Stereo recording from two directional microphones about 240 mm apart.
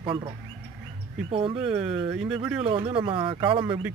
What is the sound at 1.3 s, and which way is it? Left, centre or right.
Speech, right.